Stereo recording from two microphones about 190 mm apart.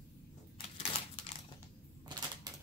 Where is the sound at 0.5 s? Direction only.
25° left (ahead or behind).